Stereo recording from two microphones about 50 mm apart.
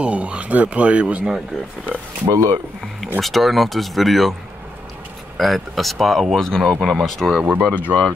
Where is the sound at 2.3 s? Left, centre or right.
Right.